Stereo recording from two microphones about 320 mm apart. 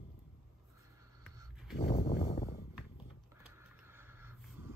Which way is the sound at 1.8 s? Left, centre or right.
Left.